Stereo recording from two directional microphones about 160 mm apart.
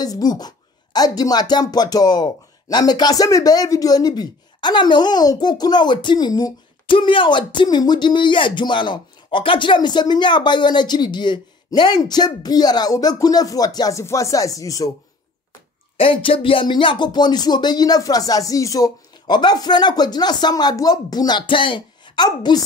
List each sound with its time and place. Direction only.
0.0 s speech: 25° left (ahead or behind)
16.0 s speech: 35° left (ahead or behind)